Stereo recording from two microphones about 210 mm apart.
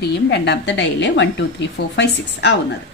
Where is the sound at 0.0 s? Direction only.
55° left (ahead or behind).